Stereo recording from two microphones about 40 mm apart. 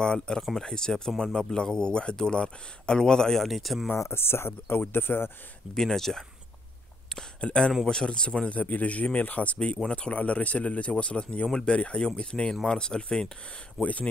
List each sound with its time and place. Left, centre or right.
0.0 s speech: left
3.4 s speech: centre
3.9 s speech: left
5.8 s speech: centre
7.3 s speech: left
8.5 s speech: left; by 13.3 s centre
13.8 s speech: centre